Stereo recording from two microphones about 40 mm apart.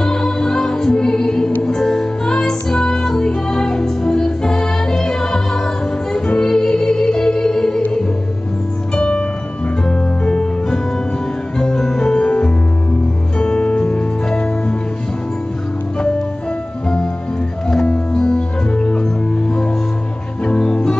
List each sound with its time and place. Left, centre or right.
0.0 s music: centre
6.1 s music: left
6.4 s music: centre
8.9 s music: left
12.2 s music: left
18.1 s music: centre
18.7 s organ: left
20.4 s music: left